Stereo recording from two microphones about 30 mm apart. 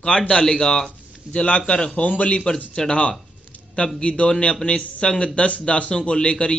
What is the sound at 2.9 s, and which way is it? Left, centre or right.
Speech, left.